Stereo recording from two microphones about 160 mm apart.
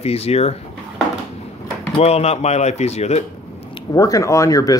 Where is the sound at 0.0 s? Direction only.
40° left (ahead or behind).